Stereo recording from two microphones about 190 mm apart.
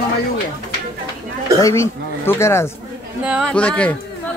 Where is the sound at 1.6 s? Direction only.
15° left (ahead or behind).